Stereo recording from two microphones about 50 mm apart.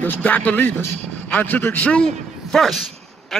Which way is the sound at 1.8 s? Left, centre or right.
Left.